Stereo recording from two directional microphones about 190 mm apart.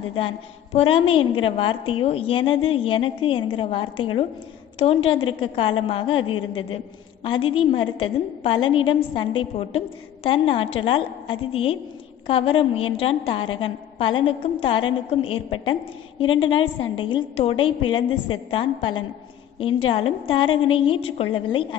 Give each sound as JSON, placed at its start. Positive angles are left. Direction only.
{"t": 0.7, "sound": "a woman's voice", "side_deg": 30}